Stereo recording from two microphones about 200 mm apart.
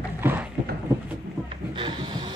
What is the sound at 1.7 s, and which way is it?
Music, 25° right (ahead or behind).